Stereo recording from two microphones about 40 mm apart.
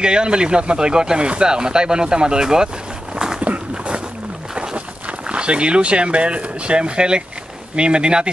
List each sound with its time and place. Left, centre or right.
0.0 s speech: right
3.3 s a sound: right
4.6 s speech: right